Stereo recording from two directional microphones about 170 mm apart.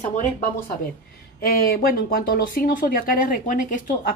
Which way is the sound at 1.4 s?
65° left (ahead or behind).